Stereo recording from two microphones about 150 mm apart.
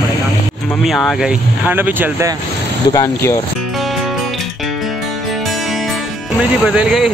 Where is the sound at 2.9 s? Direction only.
20° left (ahead or behind).